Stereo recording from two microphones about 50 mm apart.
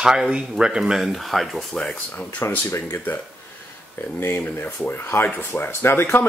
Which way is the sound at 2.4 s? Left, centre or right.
Left.